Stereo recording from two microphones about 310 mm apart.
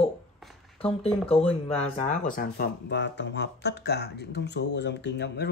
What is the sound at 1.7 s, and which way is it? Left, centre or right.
Speech, left.